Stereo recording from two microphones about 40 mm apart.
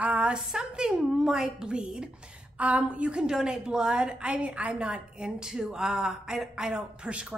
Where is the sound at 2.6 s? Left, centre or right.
Right.